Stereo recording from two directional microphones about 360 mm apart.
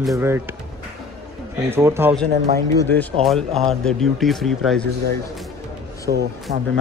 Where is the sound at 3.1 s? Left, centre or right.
Centre.